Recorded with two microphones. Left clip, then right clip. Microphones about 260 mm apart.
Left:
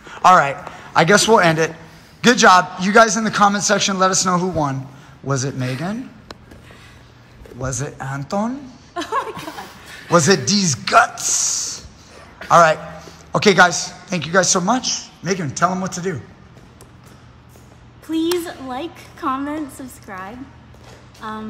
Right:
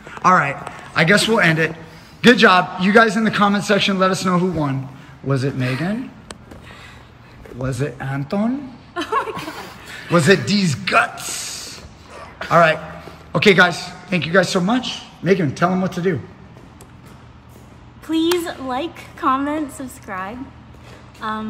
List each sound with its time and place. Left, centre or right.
0.2 s a man's voice: centre
7.6 s a man's voice: centre
8.9 s laughter: left
9.5 s a sound: centre
10.1 s a man's voice: centre
18.0 s a man's voice: centre